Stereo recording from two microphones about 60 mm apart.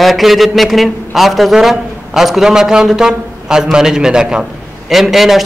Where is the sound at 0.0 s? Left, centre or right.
Centre.